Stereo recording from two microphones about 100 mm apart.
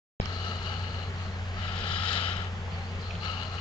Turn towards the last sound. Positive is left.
turn(degrees=60)  # may be behind; listen again after turning